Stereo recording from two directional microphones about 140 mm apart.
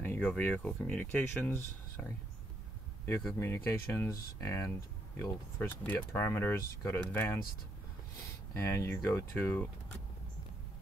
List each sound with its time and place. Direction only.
0.0 s speech: 10° left (ahead or behind)
3.3 s speech: 20° left (ahead or behind)
8.5 s speech: 15° left (ahead or behind)